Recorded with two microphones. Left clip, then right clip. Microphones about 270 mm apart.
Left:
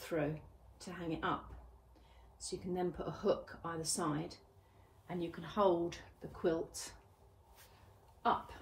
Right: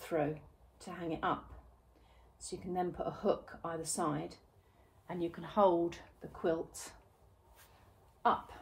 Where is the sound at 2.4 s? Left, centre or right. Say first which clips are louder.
Right 2 dB; right.